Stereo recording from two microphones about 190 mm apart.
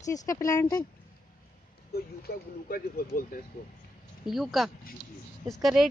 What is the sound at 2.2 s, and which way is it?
Speech, 50° left (ahead or behind).